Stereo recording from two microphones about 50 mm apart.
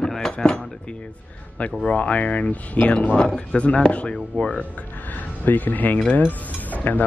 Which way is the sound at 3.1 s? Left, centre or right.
Centre.